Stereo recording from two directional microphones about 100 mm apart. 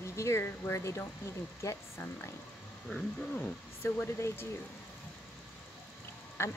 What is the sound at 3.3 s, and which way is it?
Speech, 15° left (ahead or behind).